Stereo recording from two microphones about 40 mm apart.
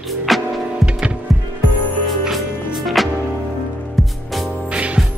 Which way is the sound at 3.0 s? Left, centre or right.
Centre.